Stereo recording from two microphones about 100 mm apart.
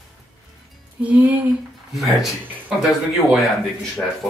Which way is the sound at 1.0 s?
15° right (ahead or behind).